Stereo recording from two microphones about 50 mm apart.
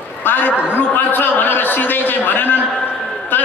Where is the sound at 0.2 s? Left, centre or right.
Left.